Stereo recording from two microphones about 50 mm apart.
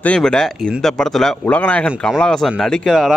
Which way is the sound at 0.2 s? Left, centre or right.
Centre.